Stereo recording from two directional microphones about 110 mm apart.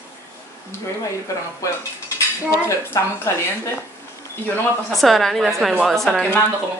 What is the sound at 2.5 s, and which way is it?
A woman's voice, 25° left (ahead or behind).